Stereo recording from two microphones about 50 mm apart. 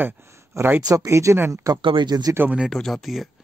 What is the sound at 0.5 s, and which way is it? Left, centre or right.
Speech, right.